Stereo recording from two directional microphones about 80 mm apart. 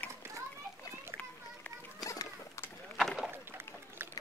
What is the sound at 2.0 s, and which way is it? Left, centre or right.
Children playing, left.